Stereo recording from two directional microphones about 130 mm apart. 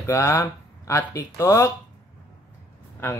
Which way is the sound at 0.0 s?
20° left (ahead or behind).